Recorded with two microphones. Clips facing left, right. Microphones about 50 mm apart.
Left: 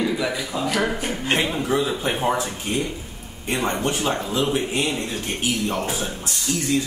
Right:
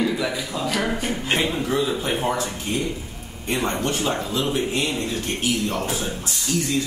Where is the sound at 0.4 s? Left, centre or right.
Centre.